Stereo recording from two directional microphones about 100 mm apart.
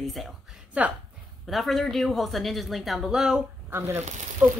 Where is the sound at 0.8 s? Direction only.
15° right (ahead or behind).